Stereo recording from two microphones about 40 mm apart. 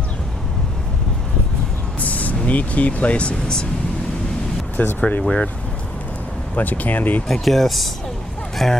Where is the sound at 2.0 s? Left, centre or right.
Left.